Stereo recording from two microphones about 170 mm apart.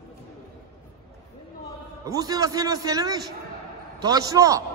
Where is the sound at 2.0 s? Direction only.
20° right (ahead or behind).